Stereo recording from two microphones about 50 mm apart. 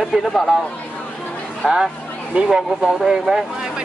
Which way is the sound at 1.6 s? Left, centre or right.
Centre.